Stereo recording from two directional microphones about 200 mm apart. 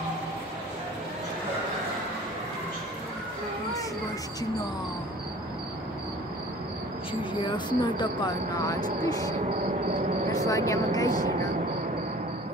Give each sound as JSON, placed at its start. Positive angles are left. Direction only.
{"t": 7.2, "sound": "a woman's voice", "side_deg": 25}